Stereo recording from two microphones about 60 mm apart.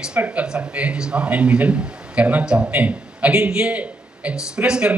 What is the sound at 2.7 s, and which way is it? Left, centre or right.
A man's voice, right.